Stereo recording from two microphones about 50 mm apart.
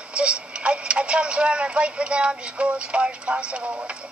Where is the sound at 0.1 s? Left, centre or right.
Right.